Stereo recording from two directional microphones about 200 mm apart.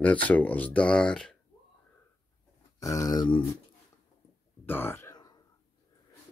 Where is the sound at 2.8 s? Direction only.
15° left (ahead or behind).